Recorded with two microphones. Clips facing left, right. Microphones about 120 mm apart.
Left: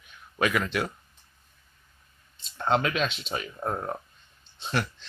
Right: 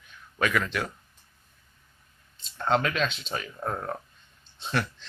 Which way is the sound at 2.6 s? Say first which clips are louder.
Even; 5° left (ahead or behind).